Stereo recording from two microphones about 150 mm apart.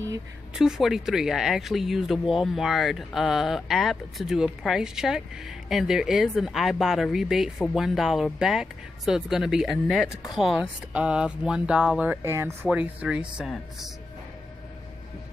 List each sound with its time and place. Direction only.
0.6 s speech: centre (ahead or behind)
12.2 s speech: 20° right (ahead or behind)
12.6 s speech: 5° right (ahead or behind)